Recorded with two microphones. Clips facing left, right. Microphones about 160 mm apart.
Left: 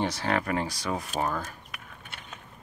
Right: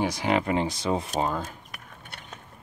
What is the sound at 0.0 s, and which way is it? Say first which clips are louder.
Speech: right 3 dB; 15° right (ahead or behind).